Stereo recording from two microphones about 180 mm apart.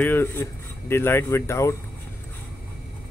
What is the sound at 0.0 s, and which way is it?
Speech, 10° left (ahead or behind).